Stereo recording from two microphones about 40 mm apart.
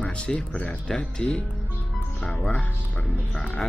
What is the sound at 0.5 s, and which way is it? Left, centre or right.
Speech, left.